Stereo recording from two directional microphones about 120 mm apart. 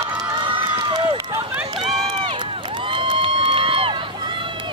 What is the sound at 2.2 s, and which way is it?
Crowd, 45° right (ahead or behind).